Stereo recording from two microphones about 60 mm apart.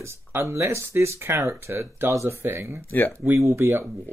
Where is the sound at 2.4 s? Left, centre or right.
Right.